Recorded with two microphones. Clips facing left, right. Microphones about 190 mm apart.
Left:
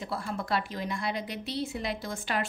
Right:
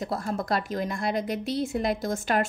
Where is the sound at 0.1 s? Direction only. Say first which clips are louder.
Right 2 dB; 45° right (ahead or behind).